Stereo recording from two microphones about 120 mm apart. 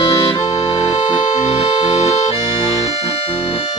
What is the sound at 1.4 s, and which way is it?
Accordion, 60° left (ahead or behind).